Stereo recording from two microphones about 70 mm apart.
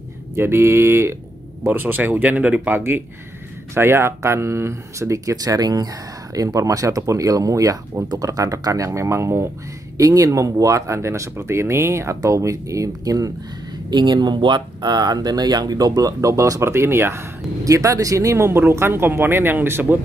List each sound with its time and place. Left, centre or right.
0.4 s speech: right
3.7 s speech: right
5.3 s speech: right
6.3 s speech: right
9.9 s speech: right
13.8 s speech: right
16.6 s speech: right
17.6 s speech: right